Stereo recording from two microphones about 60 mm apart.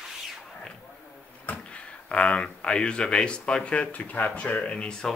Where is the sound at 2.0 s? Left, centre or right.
Left.